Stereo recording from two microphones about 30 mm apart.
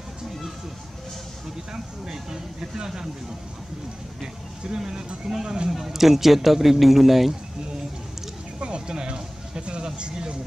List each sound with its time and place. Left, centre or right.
1.7 s speech: right
4.7 s a man's voice: right; by 7.3 s centre
8.5 s a sound: right
9.8 s speech: right